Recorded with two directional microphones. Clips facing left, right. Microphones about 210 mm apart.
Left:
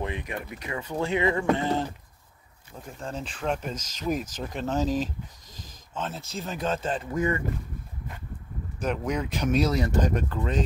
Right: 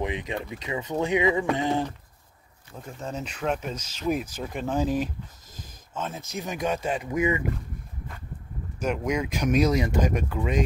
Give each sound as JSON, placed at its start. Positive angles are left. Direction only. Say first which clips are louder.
{"t": 0.0, "sound": "speech", "louder": "right 3 dB", "side_deg": -20}
{"t": 2.7, "sound": "speech", "louder": "right 1 dB", "side_deg": 0}
{"t": 8.8, "sound": "speech", "louder": "right 2 dB", "side_deg": -10}